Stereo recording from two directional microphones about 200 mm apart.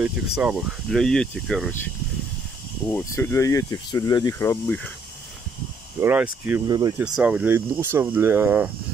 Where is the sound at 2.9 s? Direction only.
10° left (ahead or behind).